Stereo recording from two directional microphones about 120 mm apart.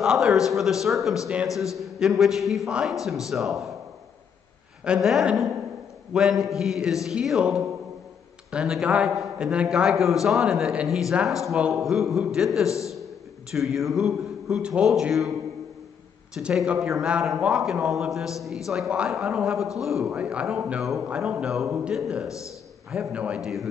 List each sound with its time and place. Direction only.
0.0 s a man's voice: 5° right (ahead or behind)
4.8 s a man's voice: 5° right (ahead or behind)
12.6 s a man's voice: 25° left (ahead or behind)
13.5 s a man's voice: centre (ahead or behind)
16.3 s a man's voice: 5° right (ahead or behind)
21.9 s a man's voice: centre (ahead or behind)